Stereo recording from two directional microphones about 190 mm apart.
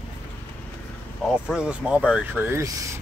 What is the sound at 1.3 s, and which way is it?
Speech, 5° right (ahead or behind).